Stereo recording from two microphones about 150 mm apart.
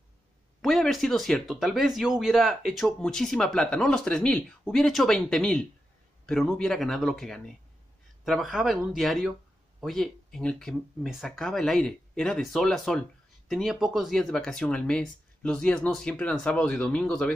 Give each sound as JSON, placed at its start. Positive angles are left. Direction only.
{"t": 0.6, "sound": "speech", "side_deg": 0}